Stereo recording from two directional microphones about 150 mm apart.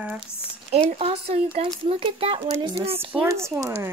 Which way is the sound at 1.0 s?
40° right (ahead or behind).